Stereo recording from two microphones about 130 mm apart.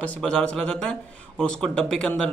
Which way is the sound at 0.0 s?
5° left (ahead or behind).